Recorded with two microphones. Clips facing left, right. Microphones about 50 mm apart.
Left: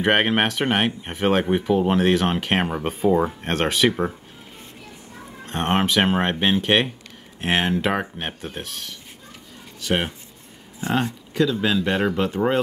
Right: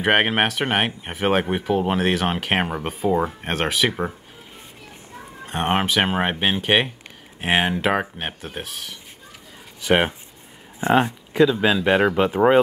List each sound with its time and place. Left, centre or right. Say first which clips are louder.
0.0 s speech: even; centre
5.4 s speech: even; centre
9.8 s speech: right 5 dB; right